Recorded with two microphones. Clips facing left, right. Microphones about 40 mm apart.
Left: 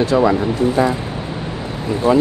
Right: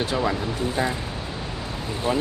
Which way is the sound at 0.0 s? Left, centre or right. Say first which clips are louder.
Left 10 dB; left.